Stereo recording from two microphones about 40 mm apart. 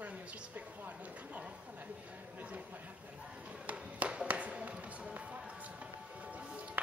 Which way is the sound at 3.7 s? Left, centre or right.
Right.